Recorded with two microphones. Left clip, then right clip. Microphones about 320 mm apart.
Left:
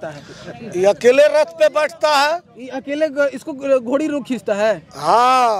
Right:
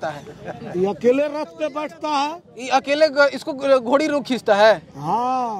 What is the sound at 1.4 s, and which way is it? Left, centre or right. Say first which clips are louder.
Speech: left 10 dB; left.